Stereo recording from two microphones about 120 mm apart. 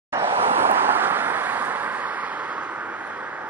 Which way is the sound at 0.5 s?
20° right (ahead or behind).